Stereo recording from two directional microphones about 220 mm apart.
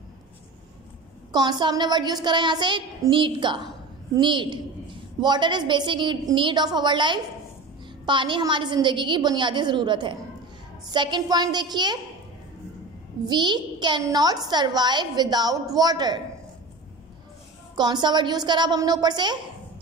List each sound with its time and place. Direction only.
1.3 s a child's voice: 20° right (ahead or behind)
13.2 s a child's voice: 20° right (ahead or behind)
17.7 s a child's voice: 20° right (ahead or behind)